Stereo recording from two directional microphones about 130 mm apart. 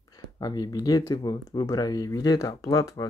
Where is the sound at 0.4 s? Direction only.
30° left (ahead or behind).